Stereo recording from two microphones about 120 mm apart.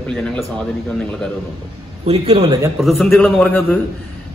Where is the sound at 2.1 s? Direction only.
55° right (ahead or behind).